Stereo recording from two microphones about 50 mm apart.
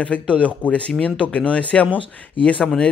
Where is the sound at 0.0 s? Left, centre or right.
Left.